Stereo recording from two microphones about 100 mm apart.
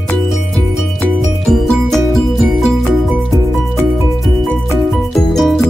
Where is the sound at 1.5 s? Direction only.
5° left (ahead or behind).